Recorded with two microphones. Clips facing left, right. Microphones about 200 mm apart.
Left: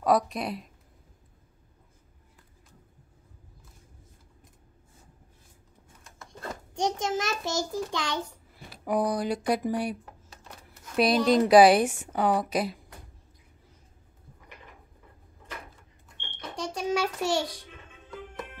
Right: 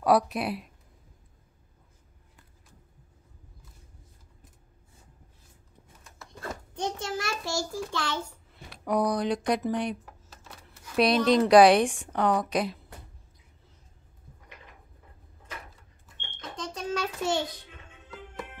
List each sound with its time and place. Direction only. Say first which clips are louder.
0.0 s a woman's voice: right 1 dB; 5° right (ahead or behind)
6.7 s a child's voice: left 5 dB; 15° left (ahead or behind)
8.6 s a child's voice: even; 5° left (ahead or behind)
11.0 s a woman's voice: even; 5° left (ahead or behind)
16.3 s cash register: left 3 dB; 10° left (ahead or behind)